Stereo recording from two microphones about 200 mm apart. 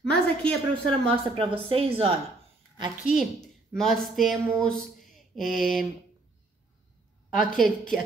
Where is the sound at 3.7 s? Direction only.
Centre (ahead or behind).